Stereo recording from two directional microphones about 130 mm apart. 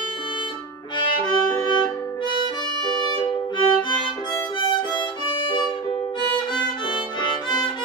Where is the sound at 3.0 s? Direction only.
40° left (ahead or behind).